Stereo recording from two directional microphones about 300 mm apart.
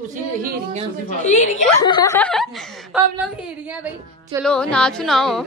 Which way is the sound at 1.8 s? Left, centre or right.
Centre.